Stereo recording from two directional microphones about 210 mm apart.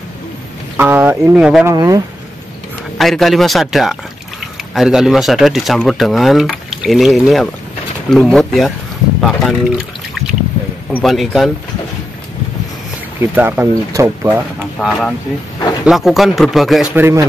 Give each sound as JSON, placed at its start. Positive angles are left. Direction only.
{"t": 0.7, "sound": "speech", "side_deg": -10}
{"t": 1.7, "sound": "speech", "side_deg": -15}
{"t": 3.0, "sound": "speech", "side_deg": 0}
{"t": 13.2, "sound": "speech", "side_deg": -10}
{"t": 14.8, "sound": "speech", "side_deg": 0}
{"t": 16.9, "sound": "speech", "side_deg": -10}